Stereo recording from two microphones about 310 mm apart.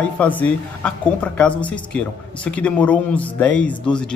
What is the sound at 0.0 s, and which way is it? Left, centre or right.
A woman's voice, centre.